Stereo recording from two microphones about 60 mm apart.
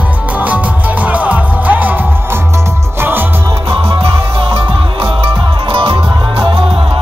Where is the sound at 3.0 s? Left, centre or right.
Right.